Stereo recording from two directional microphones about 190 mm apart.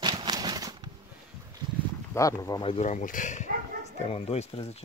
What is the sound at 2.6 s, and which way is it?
Speech, 35° left (ahead or behind).